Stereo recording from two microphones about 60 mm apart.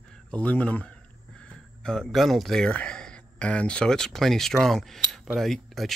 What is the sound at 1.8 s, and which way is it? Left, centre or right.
Speech, centre.